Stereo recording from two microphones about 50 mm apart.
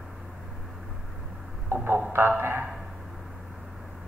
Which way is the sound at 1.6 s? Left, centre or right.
Right.